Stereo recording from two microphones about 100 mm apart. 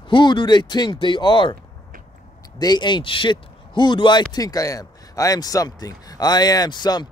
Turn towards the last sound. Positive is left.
turn(degrees=45)  # may be behind; listen again after turning